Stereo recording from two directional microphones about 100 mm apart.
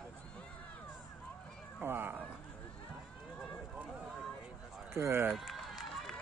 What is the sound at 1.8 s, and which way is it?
Cat, 20° right (ahead or behind).